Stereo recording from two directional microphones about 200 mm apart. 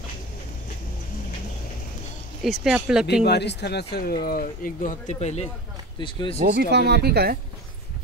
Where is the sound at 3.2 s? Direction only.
55° left (ahead or behind).